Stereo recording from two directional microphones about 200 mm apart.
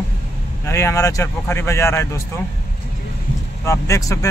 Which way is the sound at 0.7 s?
15° left (ahead or behind).